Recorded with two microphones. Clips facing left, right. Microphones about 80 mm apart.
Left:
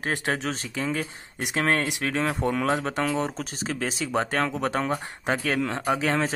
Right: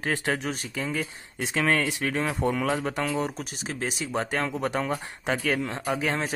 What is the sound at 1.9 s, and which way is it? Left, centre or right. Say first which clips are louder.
Speech: even; left.